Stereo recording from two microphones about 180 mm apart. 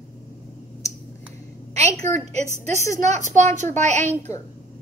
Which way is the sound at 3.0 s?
40° right (ahead or behind).